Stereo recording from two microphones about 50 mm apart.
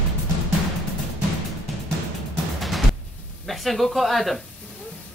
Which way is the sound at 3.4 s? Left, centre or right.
Centre.